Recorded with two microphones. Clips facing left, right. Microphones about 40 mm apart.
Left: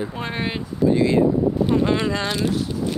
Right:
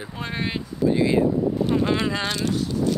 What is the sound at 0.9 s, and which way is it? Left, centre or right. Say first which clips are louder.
Speech: left 2 dB; centre.